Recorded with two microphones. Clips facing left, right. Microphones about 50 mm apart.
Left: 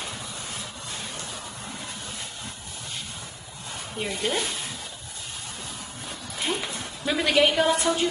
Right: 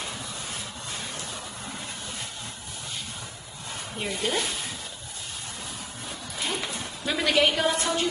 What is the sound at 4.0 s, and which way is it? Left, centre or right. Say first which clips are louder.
Speech: left 1 dB; centre.